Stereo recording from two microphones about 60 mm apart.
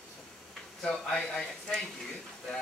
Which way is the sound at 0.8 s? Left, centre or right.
Centre.